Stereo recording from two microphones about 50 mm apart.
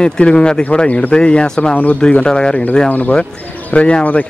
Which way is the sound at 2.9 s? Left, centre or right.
Left.